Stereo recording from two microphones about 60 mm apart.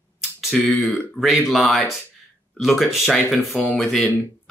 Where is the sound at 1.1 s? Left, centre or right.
Centre.